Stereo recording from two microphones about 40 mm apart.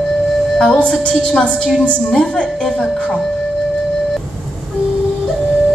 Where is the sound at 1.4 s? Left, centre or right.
Left.